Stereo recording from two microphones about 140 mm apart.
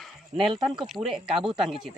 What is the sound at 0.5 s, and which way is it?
Speech, 35° right (ahead or behind).